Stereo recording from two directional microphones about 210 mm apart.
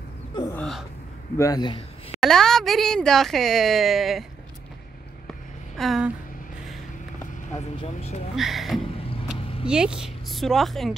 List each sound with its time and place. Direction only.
0.4 s gasp: 10° left (ahead or behind)
1.4 s a man's voice: 20° left (ahead or behind)
2.1 s speech: centre (ahead or behind)
5.8 s a sound: centre (ahead or behind)
7.5 s speech: 30° left (ahead or behind)
8.4 s speech: centre (ahead or behind)